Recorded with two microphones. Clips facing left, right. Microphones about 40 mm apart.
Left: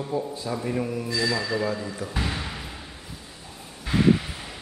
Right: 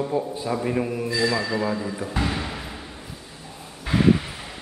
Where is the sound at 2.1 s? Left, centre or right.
Centre.